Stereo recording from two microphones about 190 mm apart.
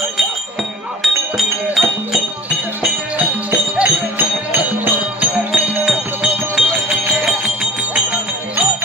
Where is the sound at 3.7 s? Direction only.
10° right (ahead or behind).